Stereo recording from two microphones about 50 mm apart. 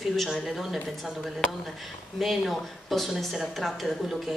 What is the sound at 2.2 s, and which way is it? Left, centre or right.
Speech, centre.